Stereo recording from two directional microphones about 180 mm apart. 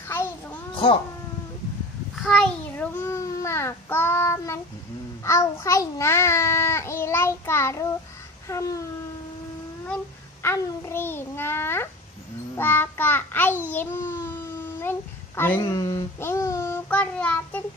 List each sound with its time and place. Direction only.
0.1 s a sound: 15° left (ahead or behind)
2.2 s a child's voice: 5° left (ahead or behind)
10.4 s a child's voice: 15° left (ahead or behind)